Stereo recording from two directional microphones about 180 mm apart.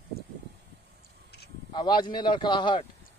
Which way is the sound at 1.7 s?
25° left (ahead or behind).